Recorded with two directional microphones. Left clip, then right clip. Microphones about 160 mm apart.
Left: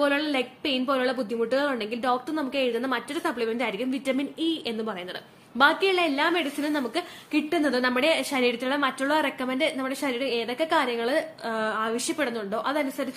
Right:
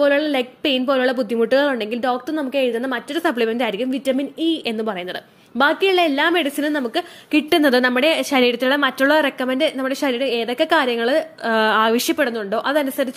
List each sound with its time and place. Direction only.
0.0 s a woman's voice: 30° right (ahead or behind)
7.4 s speech: 65° right (ahead or behind)
7.8 s a woman's voice: 40° right (ahead or behind); by 12.2 s 70° right (ahead or behind)
12.2 s a woman's voice: 45° right (ahead or behind)